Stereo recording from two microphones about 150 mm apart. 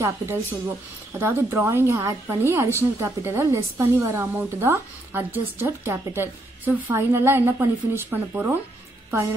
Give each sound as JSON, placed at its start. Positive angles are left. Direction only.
{"t": 0.0, "sound": "a woman's voice", "side_deg": -15}